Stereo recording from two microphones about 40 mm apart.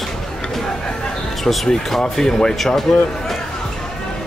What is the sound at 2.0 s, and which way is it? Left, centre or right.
Speech, centre.